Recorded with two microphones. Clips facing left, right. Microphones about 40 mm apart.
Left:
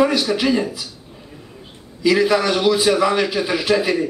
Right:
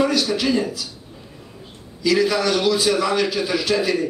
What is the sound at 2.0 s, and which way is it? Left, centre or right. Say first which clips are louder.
A man's voice: left 3 dB; centre.